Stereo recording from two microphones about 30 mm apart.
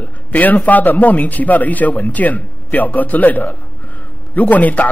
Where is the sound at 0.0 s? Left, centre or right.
Left.